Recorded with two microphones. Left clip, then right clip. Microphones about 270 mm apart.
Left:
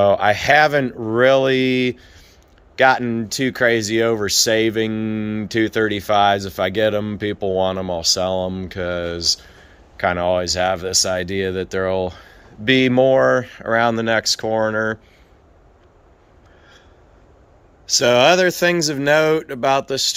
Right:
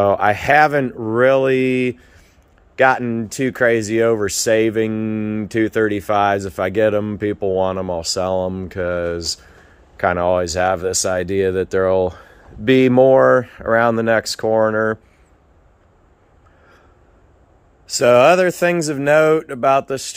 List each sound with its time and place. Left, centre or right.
0.0 s speech: centre
17.9 s speech: centre